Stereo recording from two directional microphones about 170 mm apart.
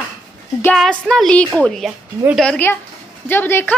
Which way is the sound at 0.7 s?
5° left (ahead or behind).